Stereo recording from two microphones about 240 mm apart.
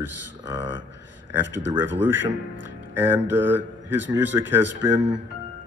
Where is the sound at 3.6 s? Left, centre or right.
Right.